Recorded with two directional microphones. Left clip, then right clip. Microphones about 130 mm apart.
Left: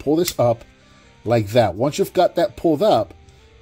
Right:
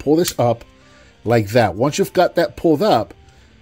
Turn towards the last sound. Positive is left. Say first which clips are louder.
# right 1 dB
turn(degrees=-25)  # may be behind; listen again after turning